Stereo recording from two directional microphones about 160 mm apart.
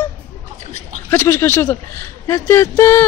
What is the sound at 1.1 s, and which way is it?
Speech, 15° left (ahead or behind).